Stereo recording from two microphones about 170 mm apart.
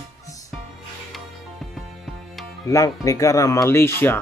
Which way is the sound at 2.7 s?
20° left (ahead or behind).